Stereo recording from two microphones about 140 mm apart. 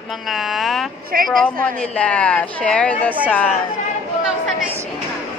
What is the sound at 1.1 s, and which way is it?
Speech, 90° right.